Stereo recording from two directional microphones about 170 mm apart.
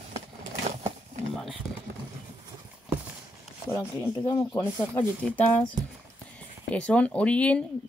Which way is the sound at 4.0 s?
20° left (ahead or behind).